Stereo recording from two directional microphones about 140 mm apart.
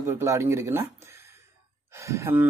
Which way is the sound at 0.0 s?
20° right (ahead or behind).